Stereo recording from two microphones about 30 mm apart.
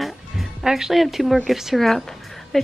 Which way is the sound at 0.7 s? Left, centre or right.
Centre.